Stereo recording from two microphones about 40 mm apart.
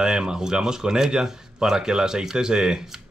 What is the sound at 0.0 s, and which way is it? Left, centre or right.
Speech, centre.